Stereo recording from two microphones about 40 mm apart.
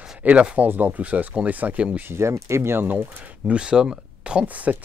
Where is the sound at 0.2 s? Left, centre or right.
Right.